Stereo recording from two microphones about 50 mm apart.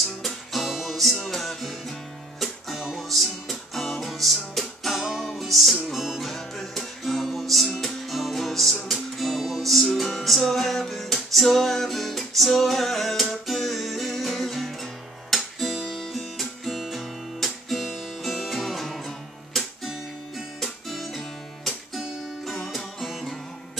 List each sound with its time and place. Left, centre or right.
0.0 s music: centre
15.2 s guitar: centre
20.6 s music: centre
22.5 s music: centre